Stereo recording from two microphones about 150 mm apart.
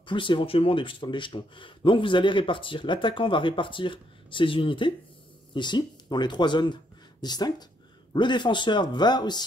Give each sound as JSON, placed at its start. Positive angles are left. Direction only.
{"t": 0.0, "sound": "speech", "side_deg": 35}